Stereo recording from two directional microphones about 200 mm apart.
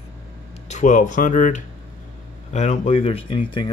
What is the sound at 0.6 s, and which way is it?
Speech, 35° left (ahead or behind).